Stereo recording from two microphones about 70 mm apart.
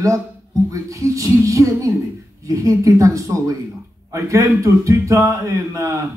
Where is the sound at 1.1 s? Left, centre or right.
Right.